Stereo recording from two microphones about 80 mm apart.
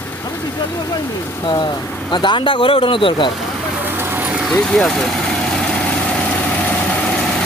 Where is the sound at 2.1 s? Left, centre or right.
Left.